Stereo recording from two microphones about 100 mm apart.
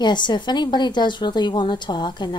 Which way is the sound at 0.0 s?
50° left (ahead or behind).